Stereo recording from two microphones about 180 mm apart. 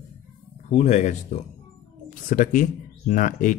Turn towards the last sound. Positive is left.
turn(degrees=45)  # may be behind; listen again after turning